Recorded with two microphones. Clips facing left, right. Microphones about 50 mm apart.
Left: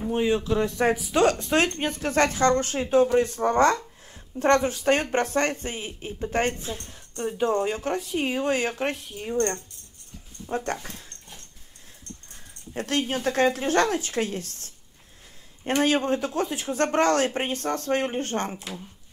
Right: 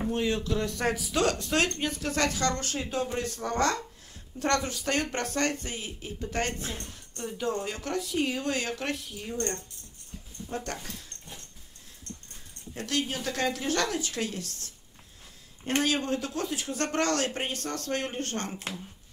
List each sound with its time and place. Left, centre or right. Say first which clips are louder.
0.1 s a woman's voice: left 8 dB; centre
12.7 s a woman's voice: left 5 dB; left